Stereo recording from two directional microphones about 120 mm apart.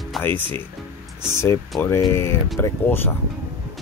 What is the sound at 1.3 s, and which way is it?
Speech, 20° left (ahead or behind).